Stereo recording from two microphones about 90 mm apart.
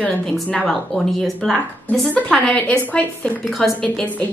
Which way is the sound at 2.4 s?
10° left (ahead or behind).